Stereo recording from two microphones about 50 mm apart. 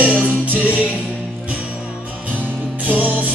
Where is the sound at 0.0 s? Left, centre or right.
Right.